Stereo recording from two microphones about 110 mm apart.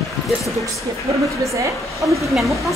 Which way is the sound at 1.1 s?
30° right (ahead or behind).